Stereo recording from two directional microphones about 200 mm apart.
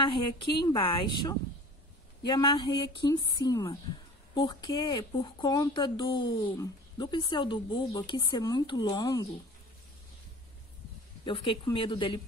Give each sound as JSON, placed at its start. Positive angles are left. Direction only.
{"t": 0.0, "sound": "speech", "side_deg": 25}
{"t": 11.2, "sound": "speech", "side_deg": 25}